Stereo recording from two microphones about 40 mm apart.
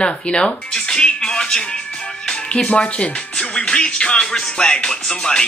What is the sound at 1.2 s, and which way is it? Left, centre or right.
Music, centre.